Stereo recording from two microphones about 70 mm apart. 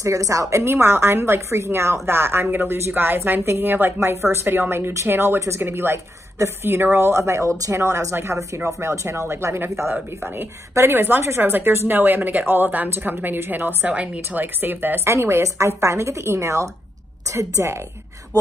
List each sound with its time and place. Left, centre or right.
0.0 s a woman's voice: right